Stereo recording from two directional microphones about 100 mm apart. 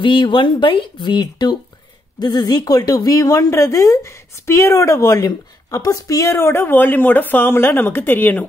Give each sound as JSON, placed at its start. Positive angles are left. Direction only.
{"t": 0.0, "sound": "speech", "side_deg": 55}